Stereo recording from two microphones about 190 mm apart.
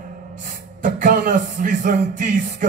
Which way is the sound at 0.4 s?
45° right (ahead or behind).